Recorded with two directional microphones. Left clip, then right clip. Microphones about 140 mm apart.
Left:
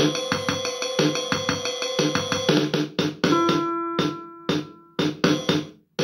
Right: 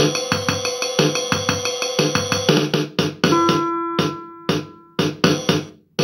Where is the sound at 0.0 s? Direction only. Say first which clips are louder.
Right 4 dB; 25° right (ahead or behind).